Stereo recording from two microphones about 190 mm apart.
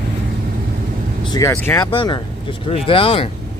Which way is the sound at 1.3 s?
15° left (ahead or behind).